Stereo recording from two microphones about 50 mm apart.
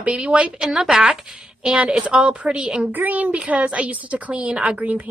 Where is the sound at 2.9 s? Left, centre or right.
Right.